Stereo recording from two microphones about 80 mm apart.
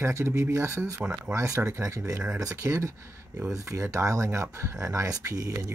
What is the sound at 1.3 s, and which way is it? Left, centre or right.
Speech, right.